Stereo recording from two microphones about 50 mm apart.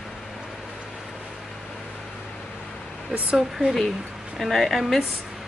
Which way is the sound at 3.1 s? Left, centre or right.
Right.